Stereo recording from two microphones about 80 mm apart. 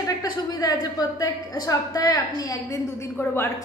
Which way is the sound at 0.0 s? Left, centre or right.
Left.